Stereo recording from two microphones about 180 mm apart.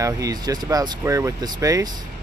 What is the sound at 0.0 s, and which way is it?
Speech, 20° right (ahead or behind).